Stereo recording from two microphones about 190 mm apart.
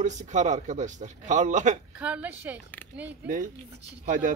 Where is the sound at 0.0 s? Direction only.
40° right (ahead or behind).